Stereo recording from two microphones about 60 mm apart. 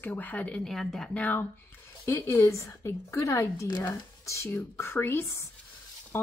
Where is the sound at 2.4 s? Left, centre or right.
Left.